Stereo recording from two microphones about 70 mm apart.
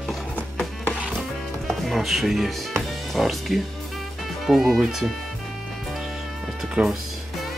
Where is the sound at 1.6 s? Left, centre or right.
Centre.